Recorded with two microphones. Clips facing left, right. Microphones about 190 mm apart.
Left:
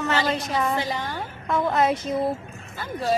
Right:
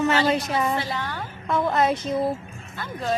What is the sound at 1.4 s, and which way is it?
Speech, centre (ahead or behind).